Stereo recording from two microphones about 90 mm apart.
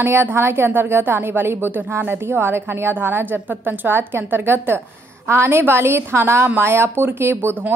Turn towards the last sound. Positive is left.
turn(degrees=-20)  # may be behind; listen again after turning